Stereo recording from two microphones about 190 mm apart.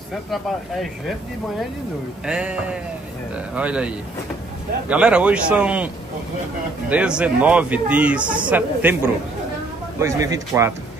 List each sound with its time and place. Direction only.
2.2 s speech: 5° right (ahead or behind)
6.9 s speech: 5° right (ahead or behind)